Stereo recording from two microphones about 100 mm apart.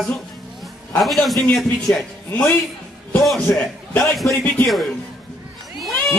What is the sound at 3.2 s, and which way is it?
Speech, 5° left (ahead or behind).